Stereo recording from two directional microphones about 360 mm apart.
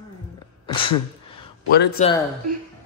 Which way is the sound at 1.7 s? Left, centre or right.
Left.